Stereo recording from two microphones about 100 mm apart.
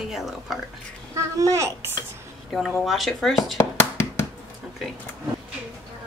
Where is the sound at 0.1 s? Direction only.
Centre (ahead or behind).